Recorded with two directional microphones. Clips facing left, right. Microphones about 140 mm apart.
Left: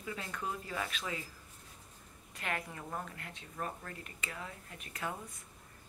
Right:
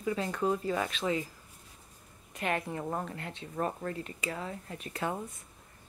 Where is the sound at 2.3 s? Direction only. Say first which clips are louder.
Right 7 dB; 25° right (ahead or behind).